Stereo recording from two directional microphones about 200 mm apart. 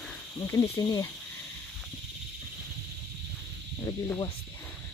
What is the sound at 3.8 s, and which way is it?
Cricket, 15° left (ahead or behind).